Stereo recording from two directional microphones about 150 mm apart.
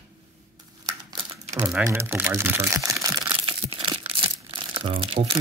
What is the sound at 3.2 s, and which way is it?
Crumpling, 35° right (ahead or behind).